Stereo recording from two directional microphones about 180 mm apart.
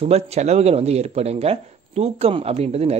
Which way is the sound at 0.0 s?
35° right (ahead or behind).